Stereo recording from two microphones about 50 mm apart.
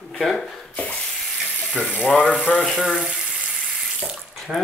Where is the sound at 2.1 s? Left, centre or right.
Left.